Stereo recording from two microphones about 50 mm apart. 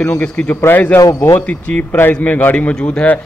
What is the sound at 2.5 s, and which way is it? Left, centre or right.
Speech, left.